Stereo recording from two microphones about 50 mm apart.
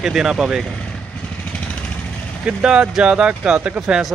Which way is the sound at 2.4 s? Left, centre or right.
Centre.